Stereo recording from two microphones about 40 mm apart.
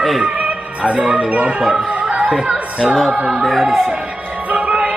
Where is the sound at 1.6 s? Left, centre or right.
Centre.